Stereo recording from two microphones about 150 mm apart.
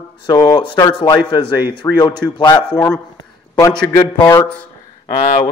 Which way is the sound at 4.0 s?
30° left (ahead or behind).